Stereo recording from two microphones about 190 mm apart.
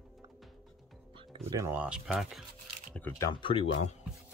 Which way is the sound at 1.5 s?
10° right (ahead or behind).